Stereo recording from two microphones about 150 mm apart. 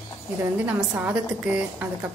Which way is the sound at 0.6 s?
10° right (ahead or behind).